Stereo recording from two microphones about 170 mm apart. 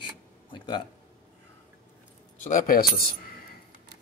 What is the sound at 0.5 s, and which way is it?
Speech, 30° left (ahead or behind).